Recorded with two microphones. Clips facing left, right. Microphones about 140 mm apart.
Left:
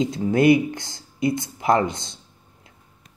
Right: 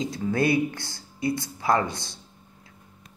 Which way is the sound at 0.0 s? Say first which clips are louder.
Left 6 dB; 25° left (ahead or behind).